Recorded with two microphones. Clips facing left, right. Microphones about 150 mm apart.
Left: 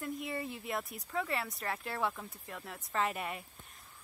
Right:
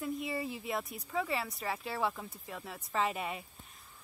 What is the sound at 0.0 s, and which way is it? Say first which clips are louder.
Speech: right 2 dB; 5° right (ahead or behind).